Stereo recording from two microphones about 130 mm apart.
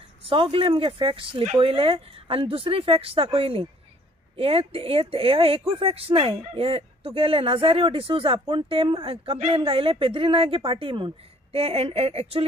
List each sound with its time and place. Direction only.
0.2 s speech: 45° right (ahead or behind)